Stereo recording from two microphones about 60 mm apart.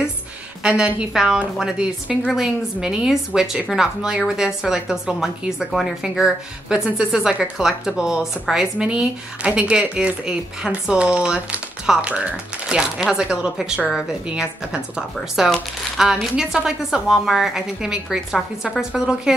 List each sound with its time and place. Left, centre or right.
0.7 s a woman's voice: centre
5.7 s speech: centre
6.0 s a woman's voice: centre
8.7 s a woman's voice: centre